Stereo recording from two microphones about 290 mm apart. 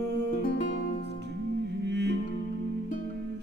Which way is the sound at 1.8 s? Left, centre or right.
Right.